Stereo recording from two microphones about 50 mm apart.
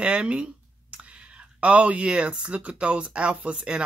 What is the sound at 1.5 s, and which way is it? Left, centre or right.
Speech, right.